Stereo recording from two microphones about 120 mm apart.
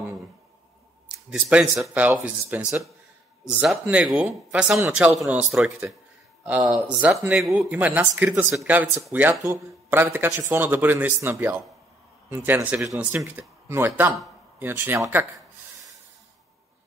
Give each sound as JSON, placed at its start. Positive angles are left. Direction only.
{"t": 1.0, "sound": "speech", "side_deg": -10}